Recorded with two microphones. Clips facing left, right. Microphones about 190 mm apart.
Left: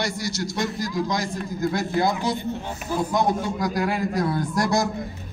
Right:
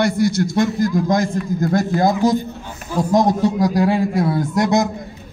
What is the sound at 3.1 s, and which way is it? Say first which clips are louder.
A man's voice: right 10 dB; 35° right (ahead or behind).